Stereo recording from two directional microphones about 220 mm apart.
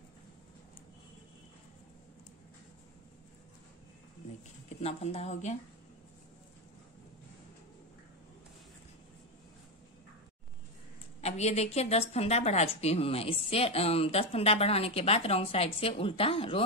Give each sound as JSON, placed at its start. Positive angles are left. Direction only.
{"t": 4.6, "sound": "a woman's voice", "side_deg": 30}
{"t": 11.1, "sound": "a woman's voice", "side_deg": 30}